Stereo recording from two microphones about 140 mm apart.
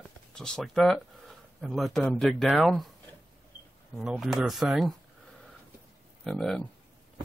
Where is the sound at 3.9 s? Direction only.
Centre (ahead or behind).